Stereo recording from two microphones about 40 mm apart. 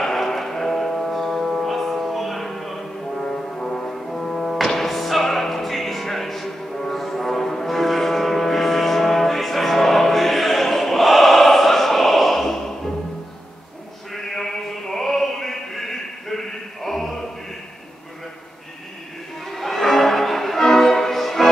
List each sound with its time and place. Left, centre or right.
0.0 s music: centre
3.2 s music: centre
14.1 s a sound: centre
19.4 s music: centre